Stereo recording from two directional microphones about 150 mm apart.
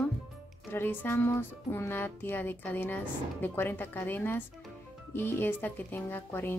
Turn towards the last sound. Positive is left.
turn(degrees=15)  # may be behind; listen again after turning